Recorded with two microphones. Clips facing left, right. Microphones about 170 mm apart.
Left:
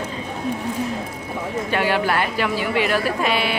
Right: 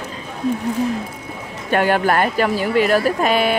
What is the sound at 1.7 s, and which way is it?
Speech, 50° right (ahead or behind).